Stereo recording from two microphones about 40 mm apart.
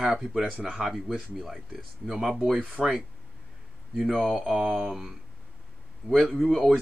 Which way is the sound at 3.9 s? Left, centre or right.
Centre.